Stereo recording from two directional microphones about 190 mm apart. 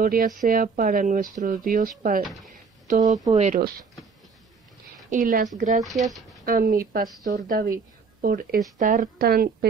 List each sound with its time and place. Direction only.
0.0 s speech: 50° right (ahead or behind)
5.1 s speech: 45° right (ahead or behind)
5.8 s speech: centre (ahead or behind)
6.4 s speech: 50° right (ahead or behind)